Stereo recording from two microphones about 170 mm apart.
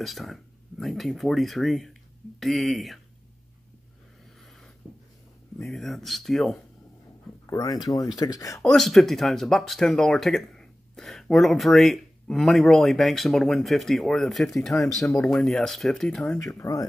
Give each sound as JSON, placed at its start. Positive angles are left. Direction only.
{"t": 0.0, "sound": "speech", "side_deg": 0}
{"t": 4.4, "sound": "a sound", "side_deg": 5}
{"t": 5.6, "sound": "speech", "side_deg": 0}
{"t": 7.4, "sound": "speech", "side_deg": 20}
{"t": 8.5, "sound": "speech", "side_deg": 0}
{"t": 16.3, "sound": "speech", "side_deg": 20}